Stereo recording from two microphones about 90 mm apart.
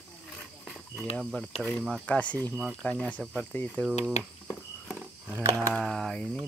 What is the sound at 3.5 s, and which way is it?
Speech, 20° left (ahead or behind).